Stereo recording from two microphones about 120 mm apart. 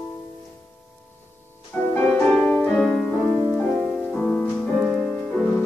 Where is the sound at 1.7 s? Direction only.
10° left (ahead or behind).